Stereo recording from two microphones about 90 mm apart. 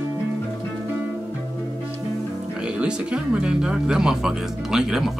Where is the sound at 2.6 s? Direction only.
10° right (ahead or behind).